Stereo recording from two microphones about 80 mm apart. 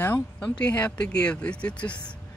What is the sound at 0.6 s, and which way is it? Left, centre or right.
Speech, centre.